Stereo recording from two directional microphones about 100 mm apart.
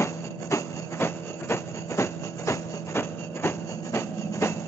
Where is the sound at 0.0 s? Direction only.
25° left (ahead or behind).